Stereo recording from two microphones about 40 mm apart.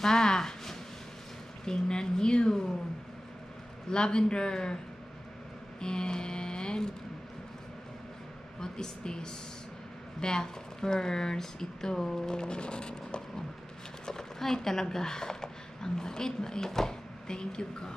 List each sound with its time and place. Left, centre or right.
0.0 s a sound: centre
3.9 s music: left
5.8 s a sound: centre
8.5 s speech: centre
12.3 s music: left
14.0 s speech: centre